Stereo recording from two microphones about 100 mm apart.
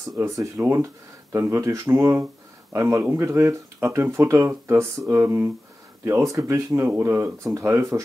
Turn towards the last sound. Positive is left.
turn(degrees=-30)  # may be behind; listen again after turning